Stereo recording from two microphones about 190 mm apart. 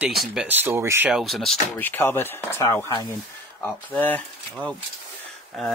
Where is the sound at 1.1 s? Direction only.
Centre (ahead or behind).